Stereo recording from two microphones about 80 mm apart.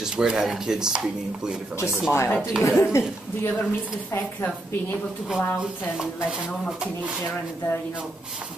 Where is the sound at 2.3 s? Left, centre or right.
Centre.